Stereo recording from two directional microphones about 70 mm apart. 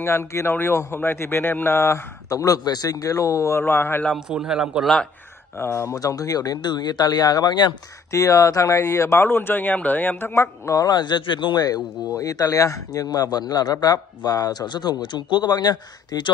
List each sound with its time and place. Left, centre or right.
0.0 s a man's voice: left
3.5 s speech: left
4.3 s a man's voice: centre
5.6 s speech: left
5.9 s speech: left
8.1 s speech: left
10.3 s speech: left
10.8 s speech: left
12.2 s speech: left
15.3 s speech: left